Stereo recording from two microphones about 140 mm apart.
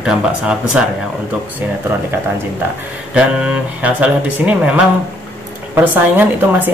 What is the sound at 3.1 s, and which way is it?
Speech, 10° right (ahead or behind).